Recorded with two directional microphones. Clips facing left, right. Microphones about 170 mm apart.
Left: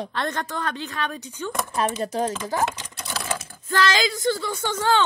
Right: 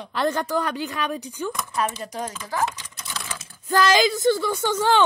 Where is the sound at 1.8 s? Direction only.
25° left (ahead or behind).